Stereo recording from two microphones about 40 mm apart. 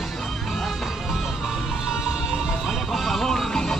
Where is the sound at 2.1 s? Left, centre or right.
Centre.